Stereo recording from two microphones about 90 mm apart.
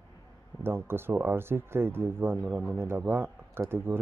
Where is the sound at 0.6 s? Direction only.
25° right (ahead or behind).